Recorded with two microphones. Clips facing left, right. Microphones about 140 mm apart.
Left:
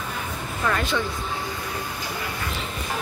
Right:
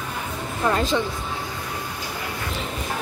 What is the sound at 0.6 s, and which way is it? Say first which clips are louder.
Speech: right 3 dB; 25° right (ahead or behind).